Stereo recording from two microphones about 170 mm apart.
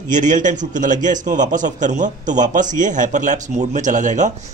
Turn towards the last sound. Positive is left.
turn(degrees=-45)  # may be behind; listen again after turning